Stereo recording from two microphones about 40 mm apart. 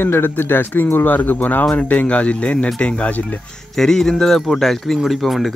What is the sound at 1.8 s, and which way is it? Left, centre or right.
Speech, left.